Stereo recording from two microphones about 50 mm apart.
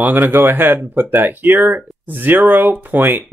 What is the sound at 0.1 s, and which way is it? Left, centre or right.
Speech, right.